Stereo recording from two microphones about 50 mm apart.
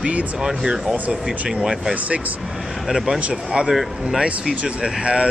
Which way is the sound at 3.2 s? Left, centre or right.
Right.